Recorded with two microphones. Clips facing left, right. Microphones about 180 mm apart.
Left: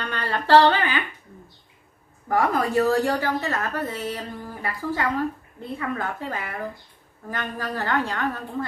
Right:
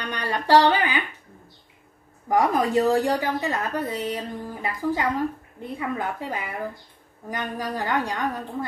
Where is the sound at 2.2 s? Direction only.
15° right (ahead or behind).